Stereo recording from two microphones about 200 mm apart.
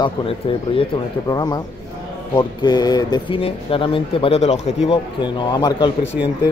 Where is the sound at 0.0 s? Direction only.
25° left (ahead or behind).